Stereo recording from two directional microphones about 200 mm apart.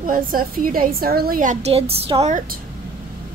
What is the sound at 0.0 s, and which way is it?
A woman's voice, 45° right (ahead or behind).